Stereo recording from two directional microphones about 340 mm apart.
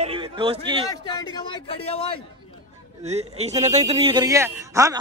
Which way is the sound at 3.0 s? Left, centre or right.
Centre.